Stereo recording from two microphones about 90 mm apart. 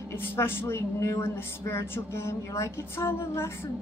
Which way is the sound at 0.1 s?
25° left (ahead or behind).